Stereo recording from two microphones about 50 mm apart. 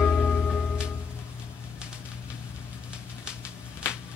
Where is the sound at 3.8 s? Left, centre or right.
Left.